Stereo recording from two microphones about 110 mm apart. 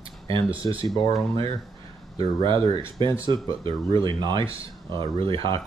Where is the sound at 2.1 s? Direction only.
55° right (ahead or behind).